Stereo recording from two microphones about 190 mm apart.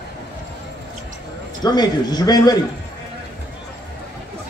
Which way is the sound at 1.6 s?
20° left (ahead or behind).